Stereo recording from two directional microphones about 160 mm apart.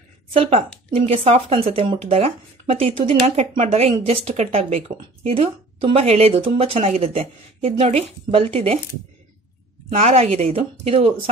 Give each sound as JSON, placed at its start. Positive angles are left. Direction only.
{"t": 0.3, "sound": "speech", "side_deg": -40}
{"t": 9.9, "sound": "speech", "side_deg": -40}